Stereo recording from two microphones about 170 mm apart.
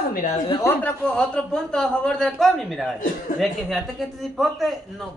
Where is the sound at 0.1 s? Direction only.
50° left (ahead or behind).